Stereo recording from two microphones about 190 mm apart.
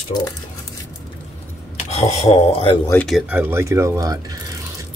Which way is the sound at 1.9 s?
35° left (ahead or behind).